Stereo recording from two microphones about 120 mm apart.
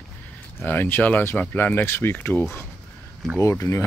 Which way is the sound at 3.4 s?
25° left (ahead or behind).